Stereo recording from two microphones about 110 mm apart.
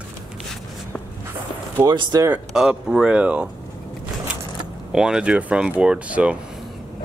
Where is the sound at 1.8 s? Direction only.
40° right (ahead or behind).